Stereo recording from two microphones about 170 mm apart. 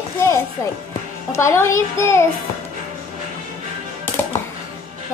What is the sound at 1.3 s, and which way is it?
Speech, 15° left (ahead or behind).